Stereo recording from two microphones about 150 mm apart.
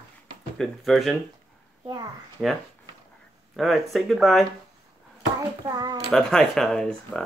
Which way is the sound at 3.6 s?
Centre (ahead or behind).